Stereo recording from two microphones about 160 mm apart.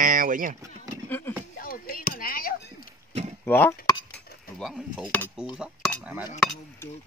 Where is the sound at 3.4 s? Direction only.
10° left (ahead or behind).